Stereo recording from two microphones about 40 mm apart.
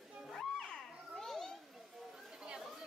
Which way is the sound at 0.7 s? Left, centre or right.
Centre.